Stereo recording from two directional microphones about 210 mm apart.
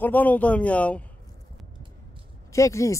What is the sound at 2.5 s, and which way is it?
Speech, 15° left (ahead or behind).